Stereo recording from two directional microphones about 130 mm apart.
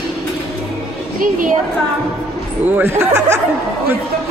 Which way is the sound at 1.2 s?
90° right.